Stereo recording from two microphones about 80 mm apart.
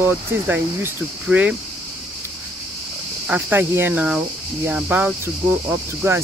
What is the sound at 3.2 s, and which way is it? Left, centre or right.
Speech, centre.